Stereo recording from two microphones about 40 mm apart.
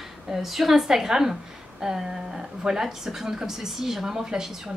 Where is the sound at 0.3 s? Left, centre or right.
Centre.